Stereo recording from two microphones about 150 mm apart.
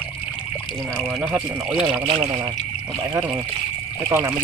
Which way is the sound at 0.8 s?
Centre (ahead or behind).